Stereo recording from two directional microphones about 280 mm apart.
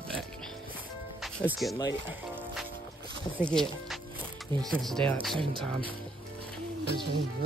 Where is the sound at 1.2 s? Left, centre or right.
Centre.